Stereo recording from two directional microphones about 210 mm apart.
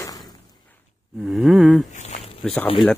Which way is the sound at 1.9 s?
35° left (ahead or behind).